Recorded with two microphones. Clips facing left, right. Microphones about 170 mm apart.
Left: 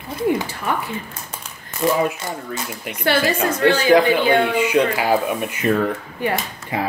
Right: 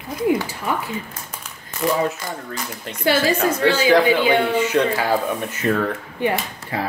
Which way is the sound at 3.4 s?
10° right (ahead or behind).